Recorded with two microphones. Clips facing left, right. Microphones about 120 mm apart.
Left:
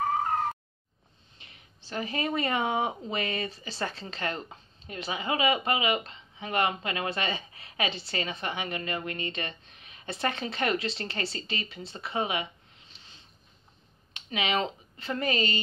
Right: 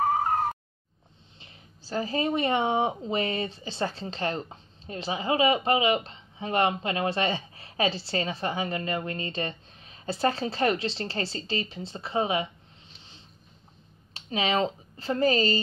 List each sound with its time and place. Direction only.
1.9 s speech: 30° right (ahead or behind)
14.1 s speech: 30° right (ahead or behind)